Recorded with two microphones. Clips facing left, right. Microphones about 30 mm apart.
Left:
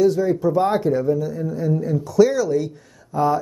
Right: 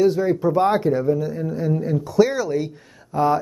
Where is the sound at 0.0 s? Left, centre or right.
Right.